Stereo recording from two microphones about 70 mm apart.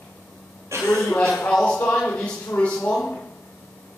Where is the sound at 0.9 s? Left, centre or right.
Centre.